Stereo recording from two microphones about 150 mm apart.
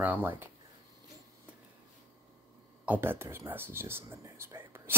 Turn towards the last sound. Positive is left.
turn(degrees=-15)  # may be behind; listen again after turning